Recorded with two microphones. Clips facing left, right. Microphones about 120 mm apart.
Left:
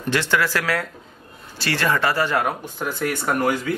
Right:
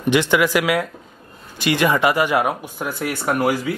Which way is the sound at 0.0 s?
15° right (ahead or behind).